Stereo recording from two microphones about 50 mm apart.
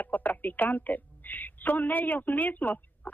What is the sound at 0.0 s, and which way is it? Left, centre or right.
Speech, left.